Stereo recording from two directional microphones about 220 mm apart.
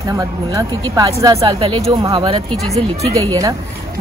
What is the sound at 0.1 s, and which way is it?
Speech, 15° right (ahead or behind).